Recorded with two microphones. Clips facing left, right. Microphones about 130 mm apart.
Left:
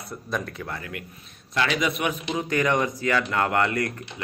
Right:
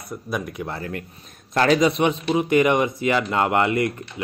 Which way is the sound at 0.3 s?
15° right (ahead or behind).